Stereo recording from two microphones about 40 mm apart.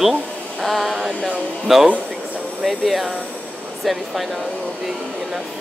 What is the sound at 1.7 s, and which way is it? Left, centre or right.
Speech, centre.